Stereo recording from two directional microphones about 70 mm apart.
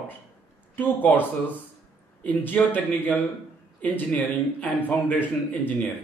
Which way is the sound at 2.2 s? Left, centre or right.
Left.